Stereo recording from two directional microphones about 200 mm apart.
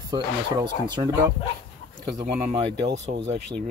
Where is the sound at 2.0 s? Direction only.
20° right (ahead or behind).